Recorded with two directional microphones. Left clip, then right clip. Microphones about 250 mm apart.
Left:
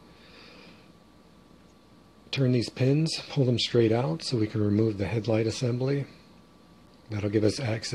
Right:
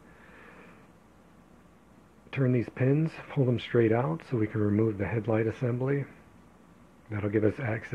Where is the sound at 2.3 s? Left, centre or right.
Centre.